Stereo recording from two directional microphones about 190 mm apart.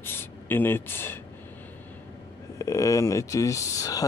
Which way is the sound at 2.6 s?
15° left (ahead or behind).